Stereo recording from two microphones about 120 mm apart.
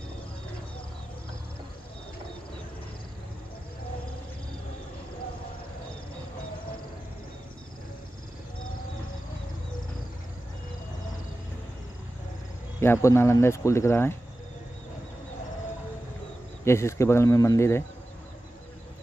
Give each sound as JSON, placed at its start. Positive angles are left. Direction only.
{"t": 12.8, "sound": "speech", "side_deg": 20}
{"t": 16.6, "sound": "speech", "side_deg": 20}